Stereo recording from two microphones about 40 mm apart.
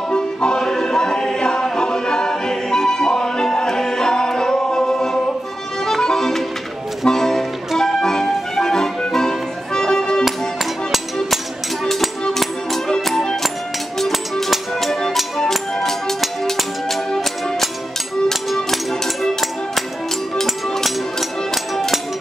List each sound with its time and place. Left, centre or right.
0.1 s music: left
5.9 s accordion: centre
7.1 s music: centre
11.8 s music: centre
13.9 s music: centre